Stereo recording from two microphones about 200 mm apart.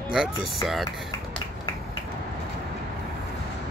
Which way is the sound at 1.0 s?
25° left (ahead or behind).